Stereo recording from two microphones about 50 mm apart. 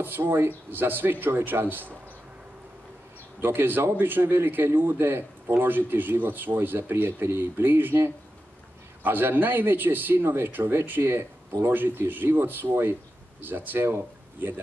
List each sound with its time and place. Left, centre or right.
0.0 s a man's voice: right
3.3 s a man's voice: right
9.0 s a man's voice: right